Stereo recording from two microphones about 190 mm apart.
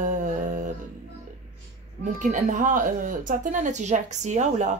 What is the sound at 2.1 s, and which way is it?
A woman's voice, 40° right (ahead or behind).